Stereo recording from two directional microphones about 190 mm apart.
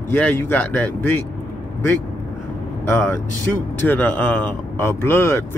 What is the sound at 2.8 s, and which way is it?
Speech, 10° left (ahead or behind).